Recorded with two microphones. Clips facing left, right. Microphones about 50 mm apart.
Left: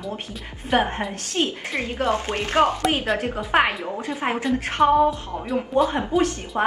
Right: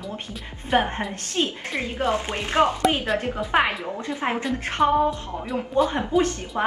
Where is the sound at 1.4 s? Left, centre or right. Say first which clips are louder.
Left 1 dB; centre.